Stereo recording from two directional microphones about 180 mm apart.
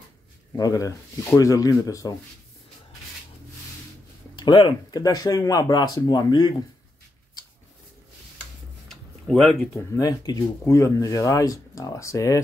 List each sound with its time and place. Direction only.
0.5 s speech: 20° left (ahead or behind)
4.4 s speech: 25° left (ahead or behind)
8.8 s a sound: 5° left (ahead or behind)
9.9 s speech: 20° left (ahead or behind)